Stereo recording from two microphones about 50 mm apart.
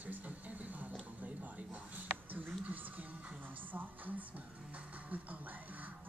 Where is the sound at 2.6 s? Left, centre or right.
Right.